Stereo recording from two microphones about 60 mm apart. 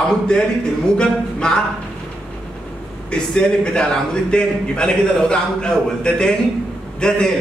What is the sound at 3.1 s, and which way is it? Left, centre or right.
A man's voice, centre.